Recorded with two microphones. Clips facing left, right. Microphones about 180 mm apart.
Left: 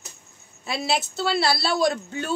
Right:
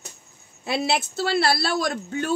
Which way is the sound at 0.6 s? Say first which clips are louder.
Right 2 dB; 60° right (ahead or behind).